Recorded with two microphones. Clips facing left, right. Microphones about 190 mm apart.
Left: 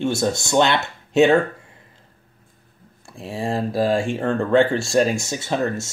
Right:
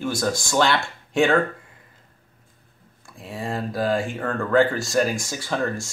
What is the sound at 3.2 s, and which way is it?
Speech, 30° left (ahead or behind).